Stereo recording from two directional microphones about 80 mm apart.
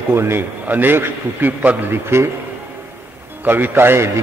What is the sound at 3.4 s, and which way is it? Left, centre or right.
Speech, right.